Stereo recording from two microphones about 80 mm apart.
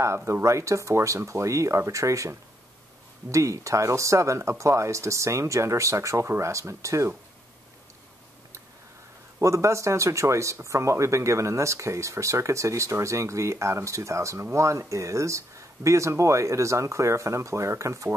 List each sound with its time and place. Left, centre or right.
0.0 s speech: right
9.4 s speech: right